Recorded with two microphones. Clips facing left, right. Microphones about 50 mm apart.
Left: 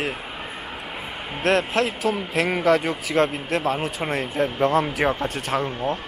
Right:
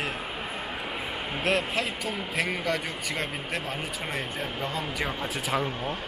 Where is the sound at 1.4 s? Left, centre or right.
Left.